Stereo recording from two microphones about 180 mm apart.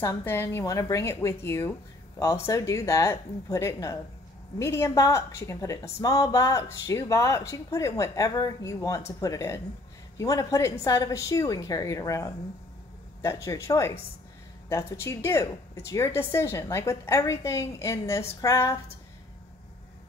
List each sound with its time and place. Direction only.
0.0 s a woman's voice: 15° left (ahead or behind)